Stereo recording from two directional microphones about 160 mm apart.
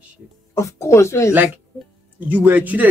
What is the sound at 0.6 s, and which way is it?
Speech, 20° left (ahead or behind).